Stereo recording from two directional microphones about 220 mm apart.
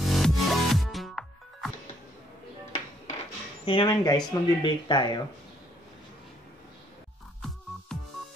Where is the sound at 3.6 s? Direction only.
20° left (ahead or behind).